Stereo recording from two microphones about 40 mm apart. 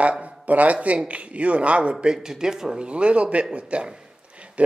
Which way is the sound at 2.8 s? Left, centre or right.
Right.